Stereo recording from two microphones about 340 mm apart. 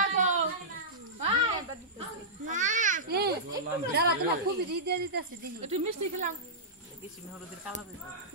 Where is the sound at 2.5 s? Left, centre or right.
Right.